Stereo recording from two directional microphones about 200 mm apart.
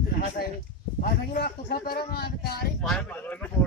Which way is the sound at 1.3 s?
45° left (ahead or behind).